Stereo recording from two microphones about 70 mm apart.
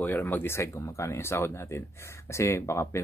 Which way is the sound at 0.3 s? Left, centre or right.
Left.